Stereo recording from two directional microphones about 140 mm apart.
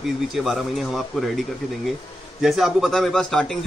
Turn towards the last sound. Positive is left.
turn(degrees=5)  # may be behind; listen again after turning